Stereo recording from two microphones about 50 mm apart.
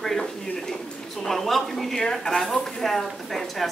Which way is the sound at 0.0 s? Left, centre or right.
Centre.